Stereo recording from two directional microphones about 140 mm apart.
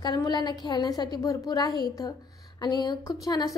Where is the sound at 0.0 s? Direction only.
30° left (ahead or behind).